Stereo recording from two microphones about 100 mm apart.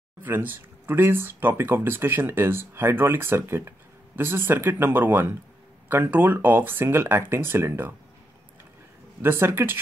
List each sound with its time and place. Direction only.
0.2 s speech: 20° right (ahead or behind)
9.2 s speech: 25° right (ahead or behind)